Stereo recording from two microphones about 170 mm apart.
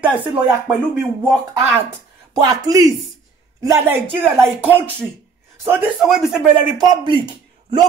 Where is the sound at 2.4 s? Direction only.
20° right (ahead or behind).